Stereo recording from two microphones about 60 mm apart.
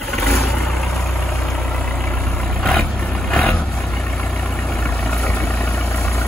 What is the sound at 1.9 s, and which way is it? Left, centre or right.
Vehicle, left.